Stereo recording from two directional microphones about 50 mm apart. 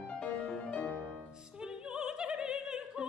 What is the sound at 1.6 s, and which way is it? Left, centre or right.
Opera, centre.